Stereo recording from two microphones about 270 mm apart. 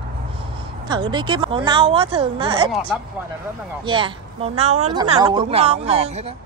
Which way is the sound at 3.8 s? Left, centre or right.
Centre.